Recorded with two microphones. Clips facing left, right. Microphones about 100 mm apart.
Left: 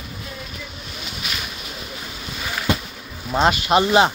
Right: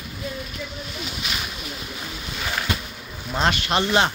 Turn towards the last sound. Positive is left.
turn(degrees=10)  # may be behind; listen again after turning